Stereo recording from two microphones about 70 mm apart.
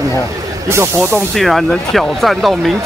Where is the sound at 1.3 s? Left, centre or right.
Centre.